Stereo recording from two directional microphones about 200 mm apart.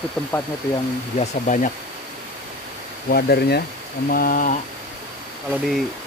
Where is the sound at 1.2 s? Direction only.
35° left (ahead or behind).